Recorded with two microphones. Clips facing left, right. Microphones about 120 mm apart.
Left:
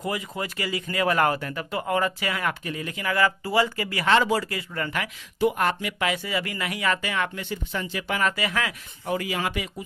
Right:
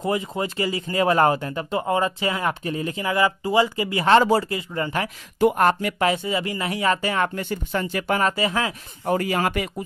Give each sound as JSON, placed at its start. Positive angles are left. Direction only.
{"t": 0.0, "sound": "speech", "side_deg": -25}
{"t": 5.4, "sound": "speech", "side_deg": -45}
{"t": 6.1, "sound": "speech", "side_deg": -25}
{"t": 9.0, "sound": "speech", "side_deg": -45}